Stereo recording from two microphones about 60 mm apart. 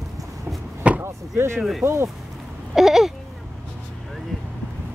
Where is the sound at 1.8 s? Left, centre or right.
Right.